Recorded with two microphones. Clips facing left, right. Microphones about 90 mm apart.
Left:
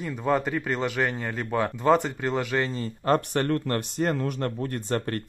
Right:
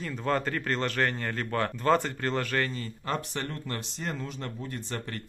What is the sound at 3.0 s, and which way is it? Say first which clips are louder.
Speech: left 10 dB; 50° left (ahead or behind).